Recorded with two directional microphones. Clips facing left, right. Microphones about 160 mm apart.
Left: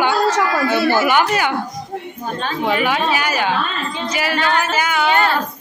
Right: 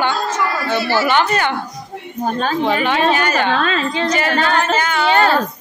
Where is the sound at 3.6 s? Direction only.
90° right.